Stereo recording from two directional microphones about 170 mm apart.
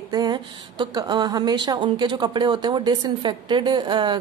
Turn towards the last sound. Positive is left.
turn(degrees=-25)  # may be behind; listen again after turning